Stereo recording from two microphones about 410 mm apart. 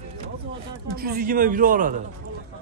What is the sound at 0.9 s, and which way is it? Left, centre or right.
A man's voice, right.